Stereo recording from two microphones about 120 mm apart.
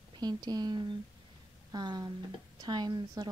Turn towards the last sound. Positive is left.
turn(degrees=-35)  # may be behind; listen again after turning